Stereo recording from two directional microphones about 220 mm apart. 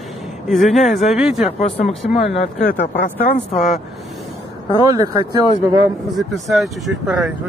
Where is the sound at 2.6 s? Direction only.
40° left (ahead or behind).